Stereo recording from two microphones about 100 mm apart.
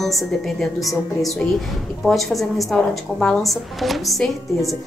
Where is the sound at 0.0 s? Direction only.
Centre (ahead or behind).